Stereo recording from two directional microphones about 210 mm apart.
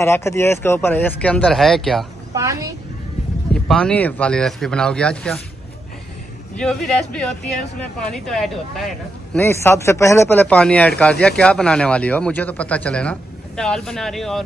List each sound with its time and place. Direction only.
0.0 s speech: 10° left (ahead or behind)
2.3 s a woman's voice: 15° right (ahead or behind)
3.5 s speech: 5° left (ahead or behind)
6.5 s speech: 5° left (ahead or behind)